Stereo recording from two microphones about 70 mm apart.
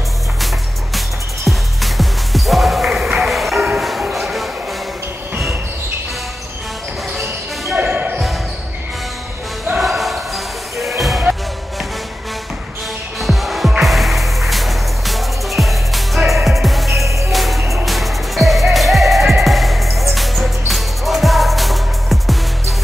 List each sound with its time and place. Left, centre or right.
1.8 s music: centre
3.7 s bow-wow: centre
4.0 s a sound: centre
7.7 s basketball bounce: right
9.8 s basketball bounce: centre
13.2 s music: centre
17.0 s music: right
17.3 s music: centre